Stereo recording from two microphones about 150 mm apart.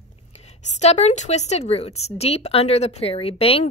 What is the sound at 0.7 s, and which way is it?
A woman's voice, 45° left (ahead or behind).